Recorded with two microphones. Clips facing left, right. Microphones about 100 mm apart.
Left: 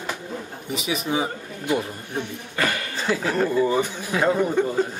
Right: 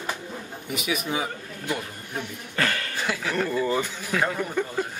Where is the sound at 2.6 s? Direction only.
15° left (ahead or behind).